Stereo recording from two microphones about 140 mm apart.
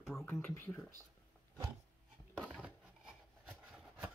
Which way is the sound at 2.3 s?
Centre (ahead or behind).